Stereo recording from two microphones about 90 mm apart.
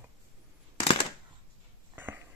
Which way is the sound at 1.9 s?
20° right (ahead or behind).